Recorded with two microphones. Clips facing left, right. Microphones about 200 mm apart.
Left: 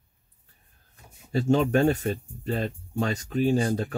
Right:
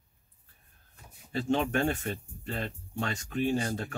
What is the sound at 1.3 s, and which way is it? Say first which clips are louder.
Speech: left 6 dB; 40° left (ahead or behind).